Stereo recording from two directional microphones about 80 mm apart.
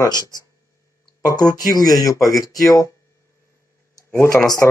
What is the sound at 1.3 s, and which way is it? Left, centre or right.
Speech, left.